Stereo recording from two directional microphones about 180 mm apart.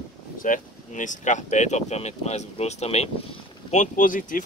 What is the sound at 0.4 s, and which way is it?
Speech, 45° left (ahead or behind).